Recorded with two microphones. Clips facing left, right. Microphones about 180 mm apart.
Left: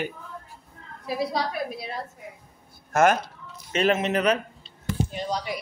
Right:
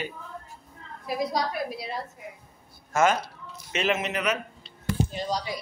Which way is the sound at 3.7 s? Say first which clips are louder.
Left 5 dB; 40° left (ahead or behind).